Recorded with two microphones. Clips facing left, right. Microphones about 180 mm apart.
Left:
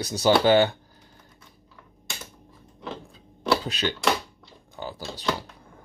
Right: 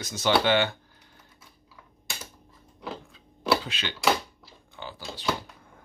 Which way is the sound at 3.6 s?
40° left (ahead or behind).